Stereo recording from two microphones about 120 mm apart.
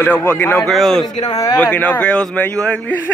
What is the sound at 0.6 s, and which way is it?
Speech, centre (ahead or behind).